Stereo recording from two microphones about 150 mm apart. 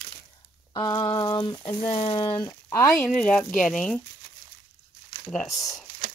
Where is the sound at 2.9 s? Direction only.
10° left (ahead or behind).